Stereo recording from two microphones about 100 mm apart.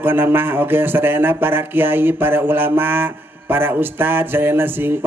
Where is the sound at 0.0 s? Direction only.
20° right (ahead or behind).